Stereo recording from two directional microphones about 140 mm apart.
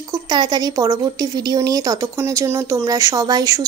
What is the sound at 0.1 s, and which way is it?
Speech, 30° right (ahead or behind).